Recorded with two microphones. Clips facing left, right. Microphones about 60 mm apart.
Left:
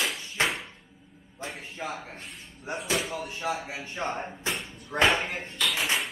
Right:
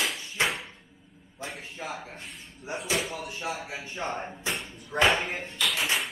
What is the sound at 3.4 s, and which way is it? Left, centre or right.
Speech, left.